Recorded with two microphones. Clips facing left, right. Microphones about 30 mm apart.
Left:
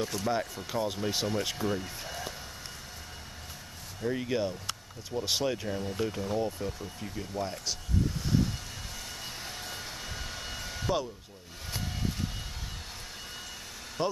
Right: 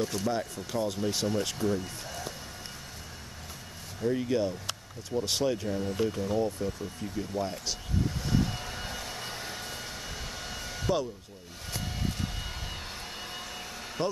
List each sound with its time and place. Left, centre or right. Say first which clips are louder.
0.2 s speech: even; centre
4.0 s speech: right 2 dB; centre
5.8 s speech: right 3 dB; centre
8.3 s vehicle: right 1 dB; centre